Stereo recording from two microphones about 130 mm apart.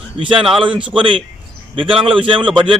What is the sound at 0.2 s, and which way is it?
Speech, 45° right (ahead or behind).